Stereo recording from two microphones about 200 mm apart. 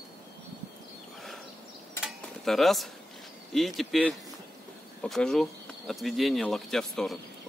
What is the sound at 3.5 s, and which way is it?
Speech, centre (ahead or behind).